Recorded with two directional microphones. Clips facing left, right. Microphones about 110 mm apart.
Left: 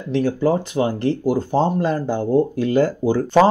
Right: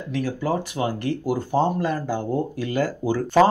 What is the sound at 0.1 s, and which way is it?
Speech, 30° left (ahead or behind).